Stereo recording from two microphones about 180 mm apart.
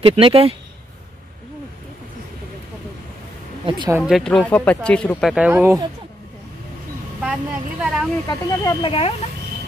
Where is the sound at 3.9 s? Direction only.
5° right (ahead or behind).